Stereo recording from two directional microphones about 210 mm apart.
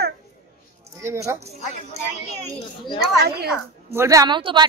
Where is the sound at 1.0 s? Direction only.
15° right (ahead or behind).